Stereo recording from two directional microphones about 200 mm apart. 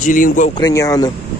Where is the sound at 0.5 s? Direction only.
20° left (ahead or behind).